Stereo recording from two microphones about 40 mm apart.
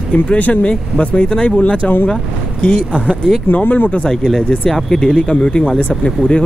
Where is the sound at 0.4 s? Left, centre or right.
Left.